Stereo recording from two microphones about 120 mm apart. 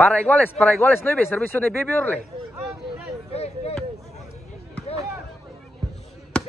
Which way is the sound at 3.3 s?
60° left (ahead or behind).